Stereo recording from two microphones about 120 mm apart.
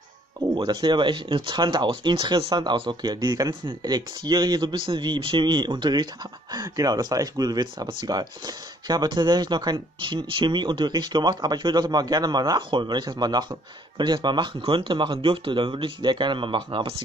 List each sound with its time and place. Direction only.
0.6 s speech: 40° right (ahead or behind)